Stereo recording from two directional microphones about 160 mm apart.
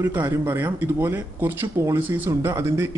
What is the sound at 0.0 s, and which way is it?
Speech, 15° right (ahead or behind).